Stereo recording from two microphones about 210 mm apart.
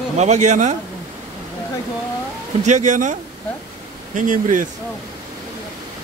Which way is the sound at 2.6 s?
35° right (ahead or behind).